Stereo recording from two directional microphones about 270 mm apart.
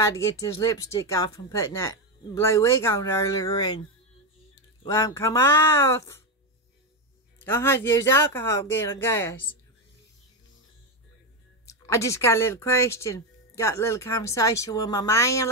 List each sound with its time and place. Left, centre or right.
0.0 s speech: centre
4.8 s speech: centre
7.4 s speech: centre
11.6 s speech: centre